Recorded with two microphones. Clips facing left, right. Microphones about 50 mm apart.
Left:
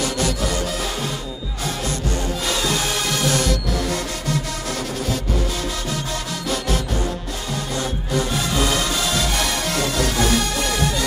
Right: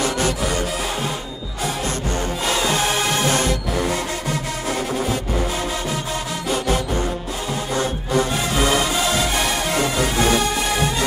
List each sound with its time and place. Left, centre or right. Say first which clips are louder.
2.4 s music: right 4 dB; right
7.7 s music: right 4 dB; right